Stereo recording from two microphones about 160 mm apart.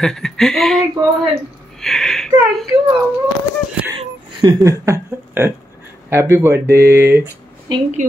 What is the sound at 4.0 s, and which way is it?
Speech, 30° right (ahead or behind).